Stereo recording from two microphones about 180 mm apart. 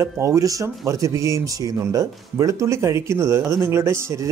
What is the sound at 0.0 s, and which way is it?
Speech, 15° right (ahead or behind).